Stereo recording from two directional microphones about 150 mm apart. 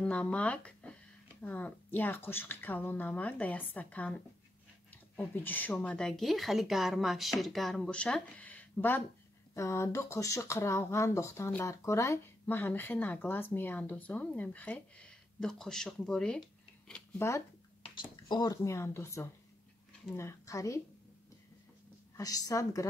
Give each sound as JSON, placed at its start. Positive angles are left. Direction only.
{"t": 0.0, "sound": "speech", "side_deg": 10}
{"t": 17.8, "sound": "a woman's voice", "side_deg": 30}
{"t": 22.1, "sound": "a woman's voice", "side_deg": 25}